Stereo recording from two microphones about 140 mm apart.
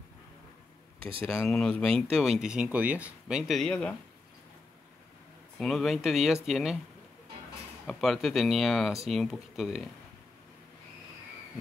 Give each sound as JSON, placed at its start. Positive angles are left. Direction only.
{"t": 0.9, "sound": "speech", "side_deg": -40}
{"t": 1.2, "sound": "speech", "side_deg": 5}
{"t": 5.6, "sound": "speech", "side_deg": 0}
{"t": 7.8, "sound": "speech", "side_deg": 0}